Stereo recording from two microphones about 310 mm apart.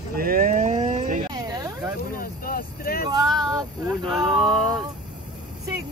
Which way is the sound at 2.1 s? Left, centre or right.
Left.